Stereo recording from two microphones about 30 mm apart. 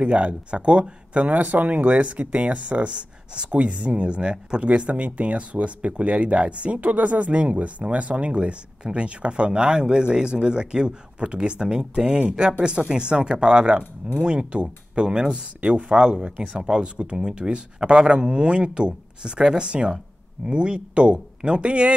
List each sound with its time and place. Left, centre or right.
0.0 s speech: right
1.1 s speech: right
2.9 s speech: right
3.5 s speech: right
4.6 s speech: right
15.6 s speech: right